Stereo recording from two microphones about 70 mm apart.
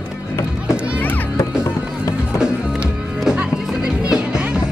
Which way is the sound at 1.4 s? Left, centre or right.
Left.